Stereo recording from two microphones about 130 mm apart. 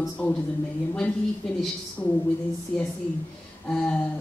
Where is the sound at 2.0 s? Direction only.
20° left (ahead or behind).